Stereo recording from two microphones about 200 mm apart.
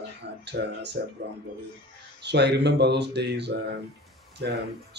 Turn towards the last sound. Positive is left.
turn(degrees=-60)  # may be behind; listen again after turning